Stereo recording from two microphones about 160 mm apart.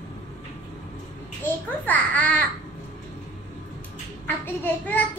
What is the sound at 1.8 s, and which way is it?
Speech, 10° left (ahead or behind).